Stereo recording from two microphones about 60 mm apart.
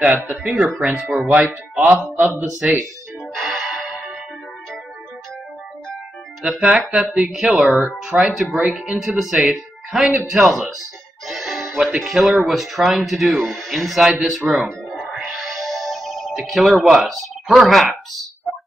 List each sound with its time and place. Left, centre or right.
0.0 s speech: right
0.7 s speech: centre
1.3 s speech: right
3.4 s music: centre
6.5 s speech: centre
8.6 s speech: centre
9.0 s speech: centre
11.2 s music: centre
12.0 s speech: centre
14.2 s music: centre
16.9 s speech: centre